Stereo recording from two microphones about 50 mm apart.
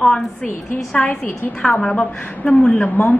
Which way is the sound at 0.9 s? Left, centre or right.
Left.